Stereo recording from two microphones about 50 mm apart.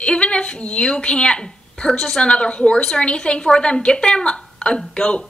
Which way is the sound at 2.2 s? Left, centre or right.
Centre.